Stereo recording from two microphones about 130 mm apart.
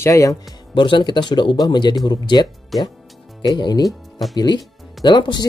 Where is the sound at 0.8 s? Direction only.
40° left (ahead or behind).